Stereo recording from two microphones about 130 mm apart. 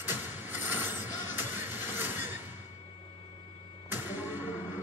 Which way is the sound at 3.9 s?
15° right (ahead or behind).